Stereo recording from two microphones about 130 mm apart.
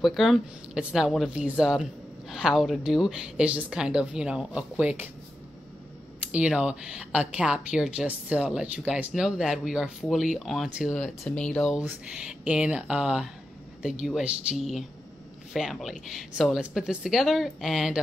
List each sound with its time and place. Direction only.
0.0 s speech: centre (ahead or behind)
6.3 s speech: 5° right (ahead or behind)
11.2 s speech: 10° left (ahead or behind)